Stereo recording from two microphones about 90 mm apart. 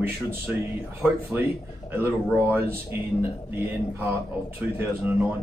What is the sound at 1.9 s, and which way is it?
Speech, 25° right (ahead or behind).